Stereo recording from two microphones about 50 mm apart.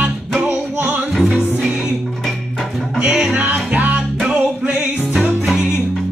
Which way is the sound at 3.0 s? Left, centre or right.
Centre.